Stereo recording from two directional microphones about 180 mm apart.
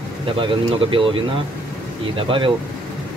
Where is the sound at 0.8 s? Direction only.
30° right (ahead or behind).